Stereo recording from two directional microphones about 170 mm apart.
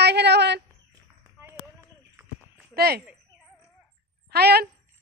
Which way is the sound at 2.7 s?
65° right (ahead or behind).